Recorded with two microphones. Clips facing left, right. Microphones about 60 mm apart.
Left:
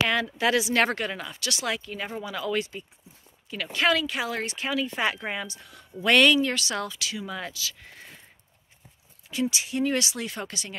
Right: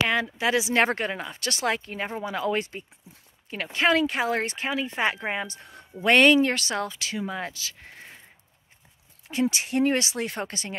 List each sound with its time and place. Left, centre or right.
0.1 s speech: centre
4.0 s speech: right
9.3 s speech: right
9.9 s speech: right